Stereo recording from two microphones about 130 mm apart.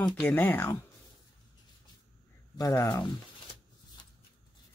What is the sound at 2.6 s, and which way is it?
Speech, 20° left (ahead or behind).